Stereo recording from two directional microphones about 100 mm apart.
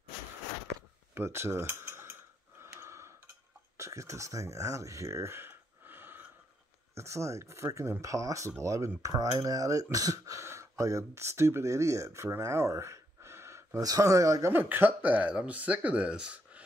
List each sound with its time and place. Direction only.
1.1 s cutlery: 25° right (ahead or behind)
2.6 s gasp: 25° right (ahead or behind)
3.7 s a sound: 30° right (ahead or behind)
7.0 s speech: 30° right (ahead or behind)
14.5 s speech: 20° right (ahead or behind)